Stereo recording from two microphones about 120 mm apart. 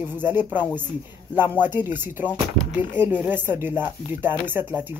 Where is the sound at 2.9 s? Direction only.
15° right (ahead or behind).